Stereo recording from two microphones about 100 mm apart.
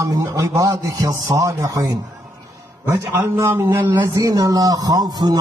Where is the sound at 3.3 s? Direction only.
25° right (ahead or behind).